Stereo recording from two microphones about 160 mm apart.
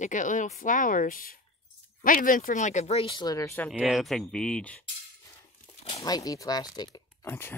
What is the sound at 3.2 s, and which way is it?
Speech, 20° left (ahead or behind).